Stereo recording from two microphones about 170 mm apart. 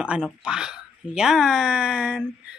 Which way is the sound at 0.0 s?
5° right (ahead or behind).